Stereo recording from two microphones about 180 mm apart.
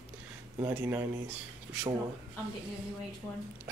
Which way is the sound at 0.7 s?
10° right (ahead or behind).